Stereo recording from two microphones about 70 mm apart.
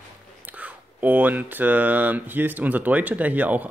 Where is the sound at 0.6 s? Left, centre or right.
Right.